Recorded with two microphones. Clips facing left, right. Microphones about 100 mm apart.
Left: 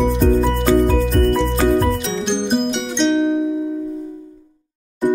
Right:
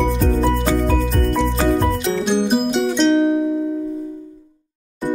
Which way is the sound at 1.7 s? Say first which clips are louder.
Even; centre (ahead or behind).